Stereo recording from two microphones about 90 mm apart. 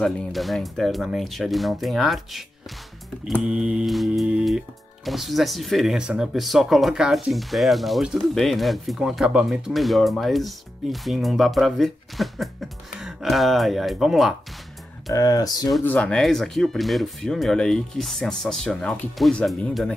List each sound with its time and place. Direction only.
0.0 s speech: 5° left (ahead or behind)
3.4 s a sound: 10° right (ahead or behind)
3.9 s speech: centre (ahead or behind)
15.1 s speech: 40° left (ahead or behind)
15.8 s speech: 15° left (ahead or behind)
16.2 s speech: 5° left (ahead or behind)